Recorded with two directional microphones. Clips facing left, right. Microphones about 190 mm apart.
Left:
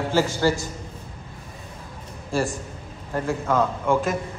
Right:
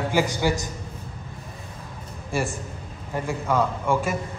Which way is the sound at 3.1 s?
5° right (ahead or behind).